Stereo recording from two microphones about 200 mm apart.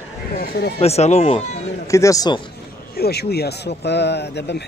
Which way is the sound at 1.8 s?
15° left (ahead or behind).